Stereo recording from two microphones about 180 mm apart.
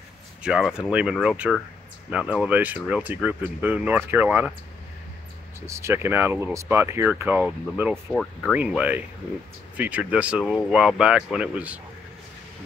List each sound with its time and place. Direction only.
0.4 s speech: 5° right (ahead or behind)
5.7 s speech: 15° right (ahead or behind)
7.9 s speech: centre (ahead or behind)